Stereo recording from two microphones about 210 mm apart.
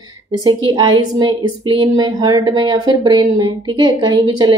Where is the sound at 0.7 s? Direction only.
20° right (ahead or behind).